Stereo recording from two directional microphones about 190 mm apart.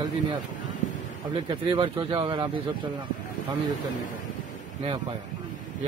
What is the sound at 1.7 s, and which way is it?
Speech, 25° right (ahead or behind).